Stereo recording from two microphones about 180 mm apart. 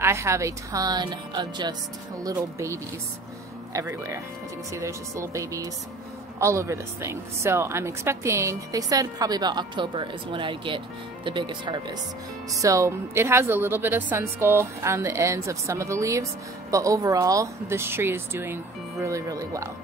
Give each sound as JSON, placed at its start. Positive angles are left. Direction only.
{"t": 0.0, "sound": "a woman's voice", "side_deg": -15}